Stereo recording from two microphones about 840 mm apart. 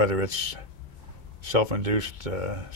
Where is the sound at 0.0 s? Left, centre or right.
Right.